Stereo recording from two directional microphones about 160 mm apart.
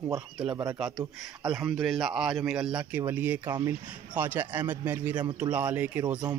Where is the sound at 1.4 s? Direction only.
Centre (ahead or behind).